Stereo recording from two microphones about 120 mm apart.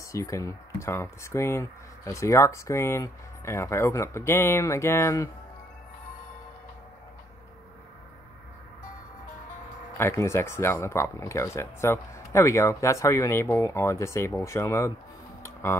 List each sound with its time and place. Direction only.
0.0 s speech: 25° left (ahead or behind)
9.9 s speech: 20° left (ahead or behind)
15.4 s music: 20° left (ahead or behind)